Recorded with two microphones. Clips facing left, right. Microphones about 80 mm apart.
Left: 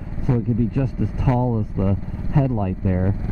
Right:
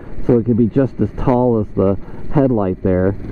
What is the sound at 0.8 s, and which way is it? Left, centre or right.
Speech, right.